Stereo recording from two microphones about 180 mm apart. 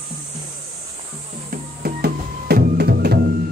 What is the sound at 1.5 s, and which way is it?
Music, 55° right (ahead or behind).